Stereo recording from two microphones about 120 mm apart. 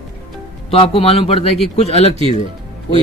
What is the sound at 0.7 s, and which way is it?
Speech, 50° left (ahead or behind).